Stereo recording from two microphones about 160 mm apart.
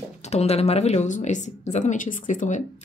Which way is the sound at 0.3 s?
40° left (ahead or behind).